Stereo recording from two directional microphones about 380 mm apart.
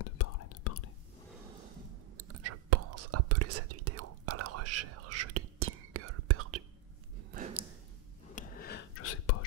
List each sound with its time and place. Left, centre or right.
0.0 s whispering: left
2.1 s whispering: right
8.4 s whispering: left